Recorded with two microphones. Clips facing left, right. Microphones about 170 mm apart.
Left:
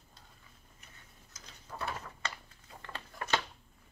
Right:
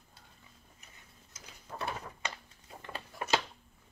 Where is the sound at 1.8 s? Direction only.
20° right (ahead or behind).